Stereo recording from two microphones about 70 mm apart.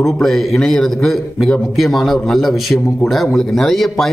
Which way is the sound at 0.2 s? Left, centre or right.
Centre.